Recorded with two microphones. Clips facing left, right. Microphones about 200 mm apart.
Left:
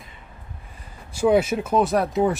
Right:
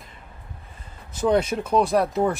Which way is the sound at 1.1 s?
10° left (ahead or behind).